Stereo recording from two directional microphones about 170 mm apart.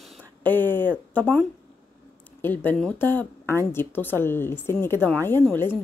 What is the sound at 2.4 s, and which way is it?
Speech, 10° left (ahead or behind).